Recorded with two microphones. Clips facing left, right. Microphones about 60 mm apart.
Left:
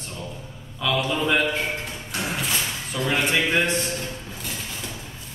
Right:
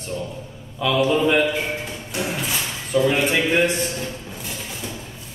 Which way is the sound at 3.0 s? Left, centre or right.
Centre.